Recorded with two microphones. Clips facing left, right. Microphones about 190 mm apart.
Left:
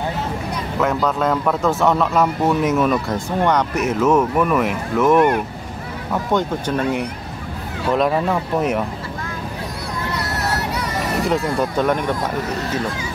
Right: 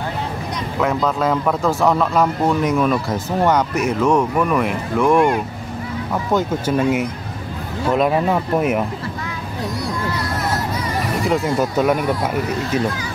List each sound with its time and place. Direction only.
0.7 s a man's voice: centre (ahead or behind)
6.3 s speech: 5° right (ahead or behind)
10.8 s music: 70° left (ahead or behind)
11.2 s a man's voice: centre (ahead or behind)